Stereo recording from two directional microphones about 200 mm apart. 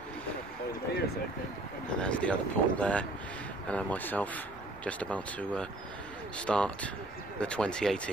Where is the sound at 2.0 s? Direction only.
5° left (ahead or behind).